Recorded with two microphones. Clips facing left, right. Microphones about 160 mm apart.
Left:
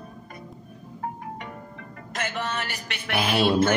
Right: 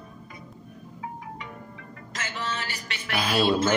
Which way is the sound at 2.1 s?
60° left (ahead or behind).